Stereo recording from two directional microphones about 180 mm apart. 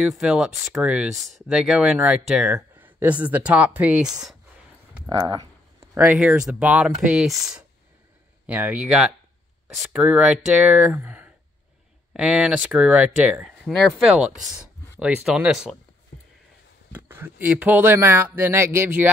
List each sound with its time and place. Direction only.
0.0 s speech: 5° right (ahead or behind)
5.3 s a sound: 20° right (ahead or behind)
5.9 s speech: 5° right (ahead or behind)
8.5 s speech: 10° right (ahead or behind)
16.9 s speech: 10° right (ahead or behind)